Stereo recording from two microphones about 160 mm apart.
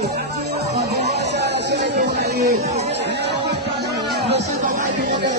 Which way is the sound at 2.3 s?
85° right.